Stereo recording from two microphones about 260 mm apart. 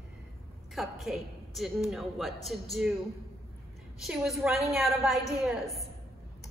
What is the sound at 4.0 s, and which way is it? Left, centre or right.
A woman's voice, centre.